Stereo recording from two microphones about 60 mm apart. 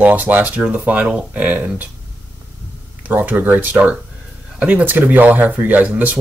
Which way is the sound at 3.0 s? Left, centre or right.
Right.